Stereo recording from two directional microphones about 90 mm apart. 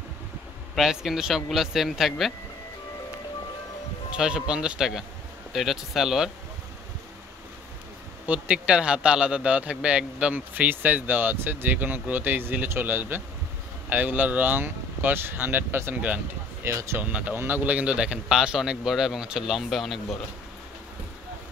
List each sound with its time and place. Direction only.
0.7 s a man's voice: 5° right (ahead or behind)
4.2 s a man's voice: 10° right (ahead or behind)
8.3 s speech: 15° right (ahead or behind)
16.6 s speech: 30° right (ahead or behind)
17.0 s a man's voice: 15° right (ahead or behind); by 20.2 s centre (ahead or behind)